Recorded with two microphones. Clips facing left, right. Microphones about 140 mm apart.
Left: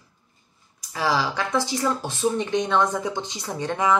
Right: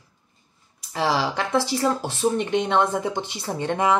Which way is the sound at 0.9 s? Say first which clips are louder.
Right 1 dB; 25° right (ahead or behind).